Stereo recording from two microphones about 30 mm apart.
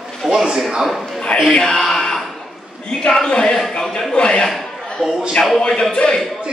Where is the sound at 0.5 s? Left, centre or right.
Centre.